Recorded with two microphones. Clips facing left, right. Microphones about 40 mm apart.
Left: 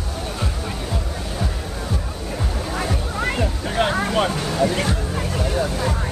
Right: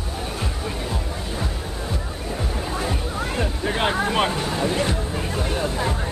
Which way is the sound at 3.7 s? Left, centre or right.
Right.